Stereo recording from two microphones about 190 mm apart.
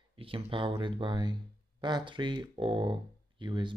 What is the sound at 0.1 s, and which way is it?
Speech, 30° right (ahead or behind).